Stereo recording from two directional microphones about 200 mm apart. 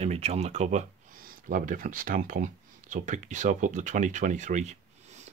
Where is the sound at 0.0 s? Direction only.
30° right (ahead or behind).